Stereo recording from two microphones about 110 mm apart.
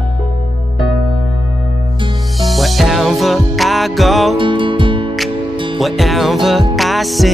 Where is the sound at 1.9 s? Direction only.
50° right (ahead or behind).